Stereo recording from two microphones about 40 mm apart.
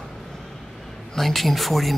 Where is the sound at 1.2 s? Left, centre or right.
Centre.